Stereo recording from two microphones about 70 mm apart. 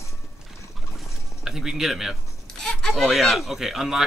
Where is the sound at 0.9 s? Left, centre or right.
Centre.